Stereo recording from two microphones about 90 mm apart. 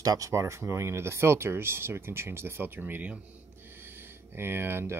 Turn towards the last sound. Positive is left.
turn(degrees=-25)  # may be behind; listen again after turning